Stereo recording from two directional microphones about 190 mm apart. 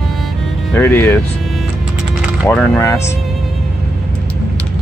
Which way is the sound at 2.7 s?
15° left (ahead or behind).